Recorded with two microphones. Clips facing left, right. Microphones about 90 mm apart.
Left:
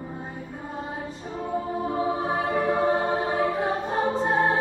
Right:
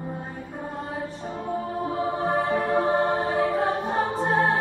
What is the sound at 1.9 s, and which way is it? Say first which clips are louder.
Music: right 1 dB; centre (ahead or behind).